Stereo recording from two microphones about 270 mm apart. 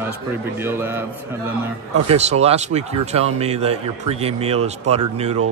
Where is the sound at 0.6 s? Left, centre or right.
Centre.